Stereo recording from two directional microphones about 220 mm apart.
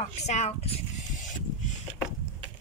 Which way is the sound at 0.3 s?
30° left (ahead or behind).